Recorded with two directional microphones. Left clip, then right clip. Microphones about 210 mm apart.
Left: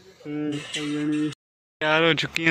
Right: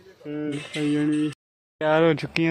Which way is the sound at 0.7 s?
15° right (ahead or behind).